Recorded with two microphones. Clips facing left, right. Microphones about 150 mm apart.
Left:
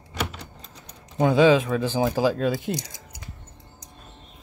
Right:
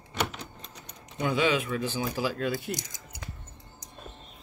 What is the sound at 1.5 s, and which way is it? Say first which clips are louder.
Speech: left 8 dB; 90° left.